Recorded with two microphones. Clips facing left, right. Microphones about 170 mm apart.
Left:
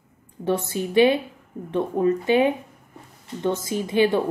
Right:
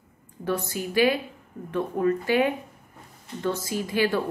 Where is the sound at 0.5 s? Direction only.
25° left (ahead or behind).